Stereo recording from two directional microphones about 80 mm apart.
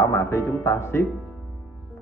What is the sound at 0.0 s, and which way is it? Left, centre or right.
A man's voice, left.